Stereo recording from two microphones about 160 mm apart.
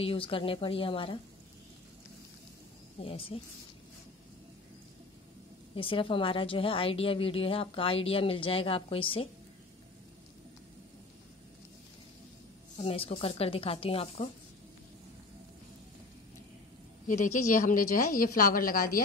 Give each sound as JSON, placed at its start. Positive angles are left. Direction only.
{"t": 0.0, "sound": "a woman's voice", "side_deg": 35}
{"t": 3.0, "sound": "a woman's voice", "side_deg": 35}
{"t": 5.8, "sound": "a woman's voice", "side_deg": 35}
{"t": 12.8, "sound": "a woman's voice", "side_deg": 35}
{"t": 17.2, "sound": "a woman's voice", "side_deg": 55}